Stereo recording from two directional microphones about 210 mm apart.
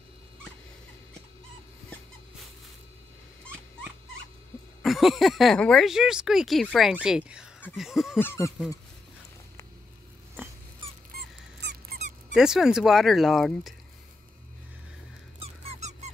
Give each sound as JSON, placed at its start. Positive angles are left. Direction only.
{"t": 4.8, "sound": "speech", "side_deg": 0}
{"t": 7.6, "sound": "a sound", "side_deg": 0}
{"t": 8.2, "sound": "a sound", "side_deg": 10}
{"t": 11.1, "sound": "squeak", "side_deg": -50}
{"t": 12.4, "sound": "speech", "side_deg": 0}
{"t": 15.3, "sound": "squeak", "side_deg": -30}